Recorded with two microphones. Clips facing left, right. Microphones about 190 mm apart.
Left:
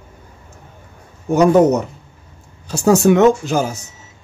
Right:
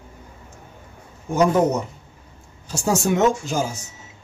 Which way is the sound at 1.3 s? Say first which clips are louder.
Left 6 dB; 70° left (ahead or behind).